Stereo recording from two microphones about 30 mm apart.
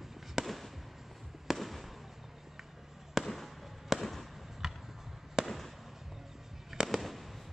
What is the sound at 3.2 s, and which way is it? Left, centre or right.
Fireworks, centre.